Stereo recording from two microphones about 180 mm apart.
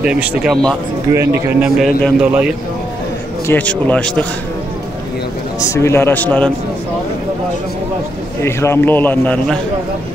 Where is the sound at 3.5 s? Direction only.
10° left (ahead or behind).